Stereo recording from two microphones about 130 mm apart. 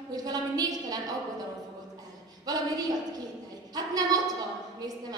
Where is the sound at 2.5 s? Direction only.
30° right (ahead or behind).